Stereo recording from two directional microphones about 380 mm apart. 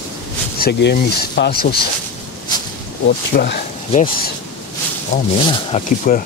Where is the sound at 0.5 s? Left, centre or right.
Left.